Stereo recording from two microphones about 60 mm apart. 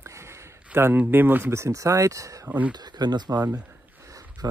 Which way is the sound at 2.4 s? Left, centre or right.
Right.